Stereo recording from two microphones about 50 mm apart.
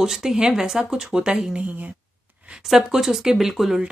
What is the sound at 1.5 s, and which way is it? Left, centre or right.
Speech, right.